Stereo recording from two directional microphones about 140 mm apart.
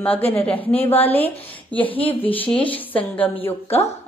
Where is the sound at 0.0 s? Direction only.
10° left (ahead or behind).